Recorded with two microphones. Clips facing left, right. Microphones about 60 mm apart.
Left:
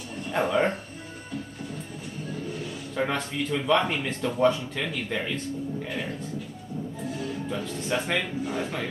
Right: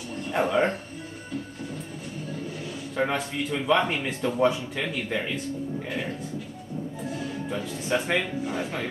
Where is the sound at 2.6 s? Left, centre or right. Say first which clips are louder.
Right 2 dB; centre.